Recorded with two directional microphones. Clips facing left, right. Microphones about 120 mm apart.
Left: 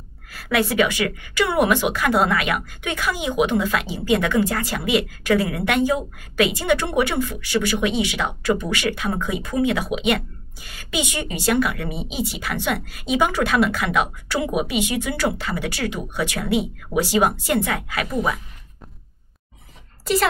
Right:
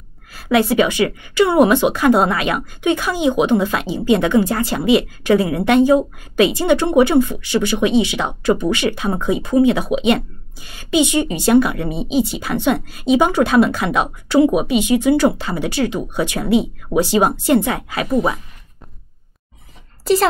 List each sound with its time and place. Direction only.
0.3 s a woman's voice: 25° right (ahead or behind)